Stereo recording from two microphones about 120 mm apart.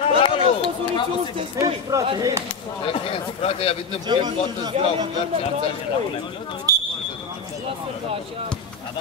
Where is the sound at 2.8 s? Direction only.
50° left (ahead or behind).